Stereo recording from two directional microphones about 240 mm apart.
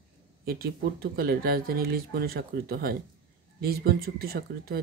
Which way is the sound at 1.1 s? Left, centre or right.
Right.